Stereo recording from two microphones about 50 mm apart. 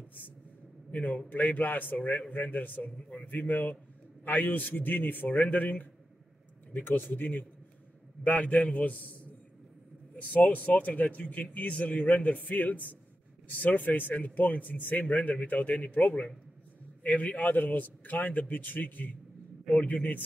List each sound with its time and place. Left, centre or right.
0.9 s a man's voice: left
10.1 s a man's voice: left